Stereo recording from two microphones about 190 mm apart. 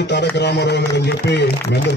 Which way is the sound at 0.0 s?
65° left (ahead or behind).